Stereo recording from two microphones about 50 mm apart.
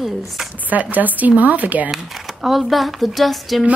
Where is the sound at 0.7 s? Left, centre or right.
Right.